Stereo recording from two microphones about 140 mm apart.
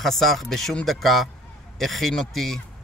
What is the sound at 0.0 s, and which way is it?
Speech, centre (ahead or behind).